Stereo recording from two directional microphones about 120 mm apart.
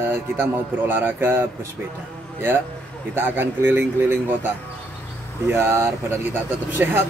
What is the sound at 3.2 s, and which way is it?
A man's voice, 15° right (ahead or behind).